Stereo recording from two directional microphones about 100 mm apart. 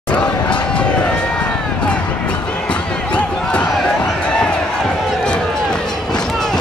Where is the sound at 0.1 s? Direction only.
15° left (ahead or behind).